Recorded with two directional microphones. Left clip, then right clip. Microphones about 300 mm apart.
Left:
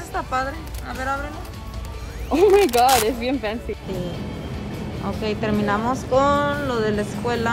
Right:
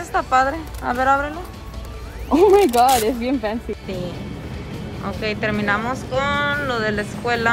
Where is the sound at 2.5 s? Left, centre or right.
Centre.